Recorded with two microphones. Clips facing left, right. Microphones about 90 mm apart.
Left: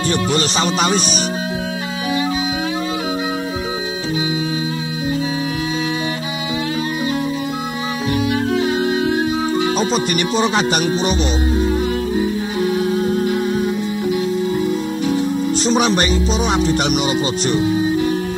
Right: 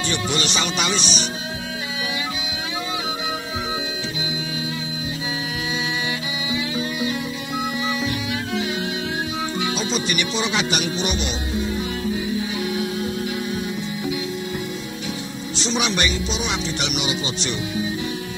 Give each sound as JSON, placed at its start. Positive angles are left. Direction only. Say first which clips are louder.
{"t": 0.1, "sound": "speech", "louder": "left 6 dB", "side_deg": 40}
{"t": 8.5, "sound": "music", "louder": "left 8 dB", "side_deg": 45}